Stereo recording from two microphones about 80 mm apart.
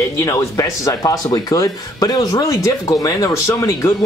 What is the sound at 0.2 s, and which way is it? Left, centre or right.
Speech, left.